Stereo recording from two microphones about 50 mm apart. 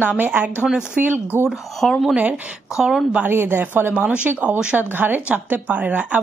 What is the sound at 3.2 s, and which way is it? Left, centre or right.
Speech, right.